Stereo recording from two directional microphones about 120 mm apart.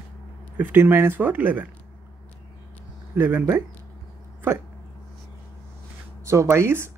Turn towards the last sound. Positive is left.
turn(degrees=-20)  # may be behind; listen again after turning